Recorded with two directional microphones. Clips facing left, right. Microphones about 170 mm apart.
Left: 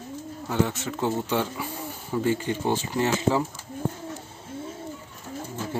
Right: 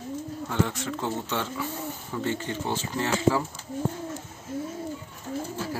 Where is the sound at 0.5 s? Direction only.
5° left (ahead or behind).